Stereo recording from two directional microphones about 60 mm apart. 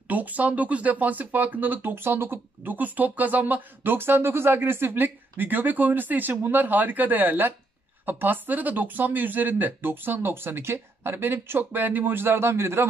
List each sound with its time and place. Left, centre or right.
0.1 s speech: right